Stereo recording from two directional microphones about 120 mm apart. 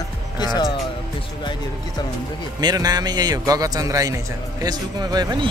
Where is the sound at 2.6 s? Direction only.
35° right (ahead or behind).